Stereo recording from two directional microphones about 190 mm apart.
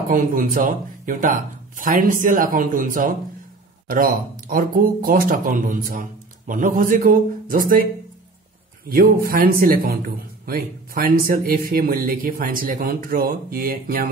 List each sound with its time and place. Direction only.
0.1 s speech: 45° right (ahead or behind)